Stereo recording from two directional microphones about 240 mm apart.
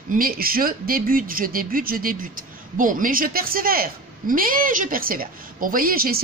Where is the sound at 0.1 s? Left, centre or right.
Right.